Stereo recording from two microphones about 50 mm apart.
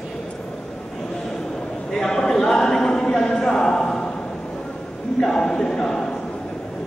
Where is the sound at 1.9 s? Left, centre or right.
Centre.